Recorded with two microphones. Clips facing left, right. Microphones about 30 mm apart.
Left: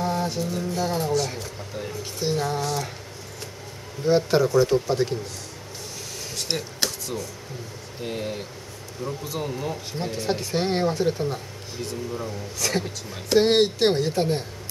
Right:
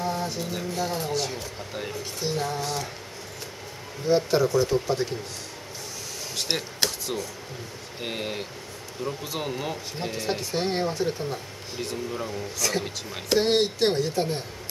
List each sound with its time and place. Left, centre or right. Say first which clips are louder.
0.0 s a sound: left 3 dB; centre
0.4 s speech: left 3 dB; right
0.7 s speech: left 3 dB; centre
1.0 s speech: left 4 dB; centre
2.2 s speech: left 3 dB; centre
2.6 s speech: left 3 dB; centre
4.0 s speech: left 2 dB; centre
4.7 s speech: left 3 dB; centre
6.4 s speech: even; centre
8.0 s speech: left 1 dB; right
9.0 s speech: left 1 dB; centre
10.1 s speech: left 3 dB; centre
11.8 s speech: even; centre
12.5 s speech: left 2 dB; centre